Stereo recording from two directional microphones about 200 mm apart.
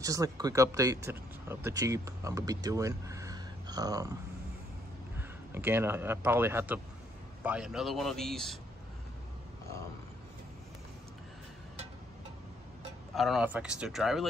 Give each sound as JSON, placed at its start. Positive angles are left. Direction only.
{"t": 0.0, "sound": "speech", "side_deg": -15}
{"t": 5.1, "sound": "a man's voice", "side_deg": -10}
{"t": 13.1, "sound": "a man's voice", "side_deg": 0}